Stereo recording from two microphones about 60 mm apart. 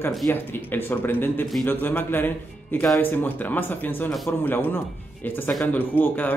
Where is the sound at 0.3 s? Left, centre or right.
Left.